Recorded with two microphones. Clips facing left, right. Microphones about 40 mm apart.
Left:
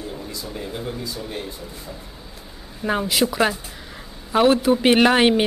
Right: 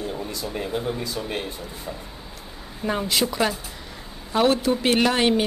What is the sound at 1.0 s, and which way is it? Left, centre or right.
Speech, right.